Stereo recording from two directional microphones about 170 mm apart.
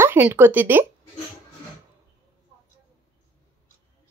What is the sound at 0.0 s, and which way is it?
Speech, 15° right (ahead or behind).